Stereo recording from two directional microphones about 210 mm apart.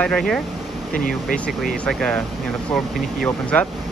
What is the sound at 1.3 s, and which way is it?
Speech, 40° left (ahead or behind).